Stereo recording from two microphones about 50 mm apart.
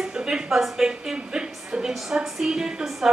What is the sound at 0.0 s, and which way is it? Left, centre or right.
A woman's voice, centre.